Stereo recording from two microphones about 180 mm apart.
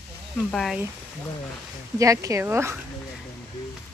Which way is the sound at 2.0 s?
20° right (ahead or behind).